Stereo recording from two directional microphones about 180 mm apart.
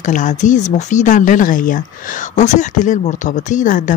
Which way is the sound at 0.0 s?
45° left (ahead or behind).